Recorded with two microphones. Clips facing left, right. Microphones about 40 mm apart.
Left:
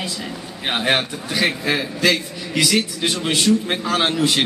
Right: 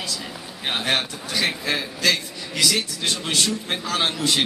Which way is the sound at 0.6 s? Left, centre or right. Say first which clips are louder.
Left 4 dB; centre.